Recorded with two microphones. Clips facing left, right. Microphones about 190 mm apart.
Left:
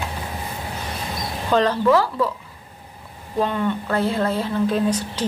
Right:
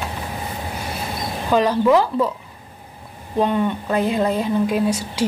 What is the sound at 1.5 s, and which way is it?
Speech, 10° right (ahead or behind).